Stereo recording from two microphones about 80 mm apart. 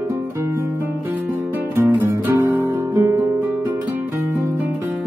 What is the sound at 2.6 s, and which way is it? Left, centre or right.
Guitar, right.